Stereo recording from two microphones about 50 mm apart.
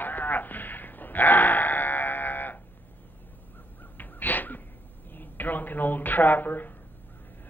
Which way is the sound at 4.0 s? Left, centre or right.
Left.